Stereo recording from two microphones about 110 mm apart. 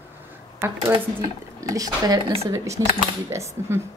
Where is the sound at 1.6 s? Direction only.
30° right (ahead or behind).